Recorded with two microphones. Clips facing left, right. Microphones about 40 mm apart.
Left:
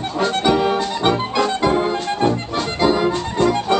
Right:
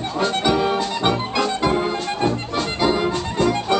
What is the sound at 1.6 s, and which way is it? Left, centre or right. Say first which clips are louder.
Accordion: left 2 dB; centre.